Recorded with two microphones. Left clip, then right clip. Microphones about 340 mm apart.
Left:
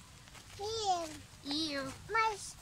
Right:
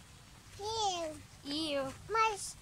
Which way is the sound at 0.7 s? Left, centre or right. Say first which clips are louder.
Even; centre.